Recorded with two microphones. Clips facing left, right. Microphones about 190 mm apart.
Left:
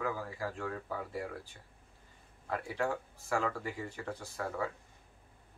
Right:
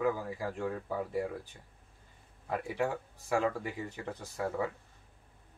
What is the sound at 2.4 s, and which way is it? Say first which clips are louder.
Speech: right 2 dB; 15° right (ahead or behind).